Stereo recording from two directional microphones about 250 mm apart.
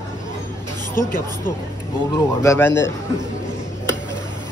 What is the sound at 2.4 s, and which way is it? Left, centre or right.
Speech, centre.